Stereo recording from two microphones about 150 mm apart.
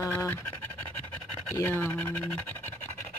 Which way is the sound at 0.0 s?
15° left (ahead or behind).